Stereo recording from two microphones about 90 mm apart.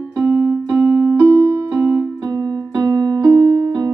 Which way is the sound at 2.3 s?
35° right (ahead or behind).